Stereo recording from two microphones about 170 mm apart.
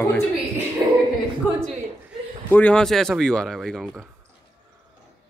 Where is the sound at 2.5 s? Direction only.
5° left (ahead or behind).